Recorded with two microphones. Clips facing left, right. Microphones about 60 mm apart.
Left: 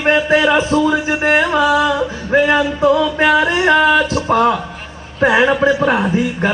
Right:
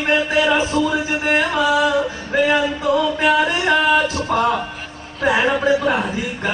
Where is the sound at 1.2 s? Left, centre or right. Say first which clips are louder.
Left 4 dB; left.